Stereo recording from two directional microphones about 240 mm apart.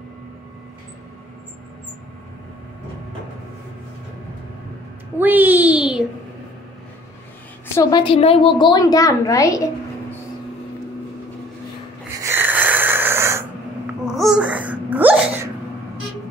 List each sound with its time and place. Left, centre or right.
5.2 s a sound: centre
7.7 s a woman's voice: centre
12.2 s wheeze: centre
14.0 s sneeze: centre